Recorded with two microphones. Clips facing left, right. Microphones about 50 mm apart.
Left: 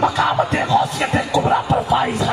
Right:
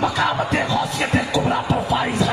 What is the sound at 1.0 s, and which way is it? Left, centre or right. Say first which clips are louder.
Speech: left 2 dB; left.